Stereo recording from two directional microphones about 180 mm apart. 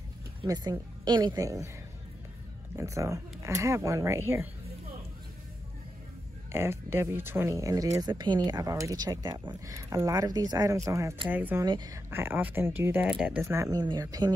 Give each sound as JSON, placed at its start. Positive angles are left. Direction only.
{"t": 0.4, "sound": "speech", "side_deg": -20}
{"t": 2.7, "sound": "speech", "side_deg": -15}
{"t": 6.5, "sound": "speech", "side_deg": -15}
{"t": 11.6, "sound": "speech", "side_deg": -20}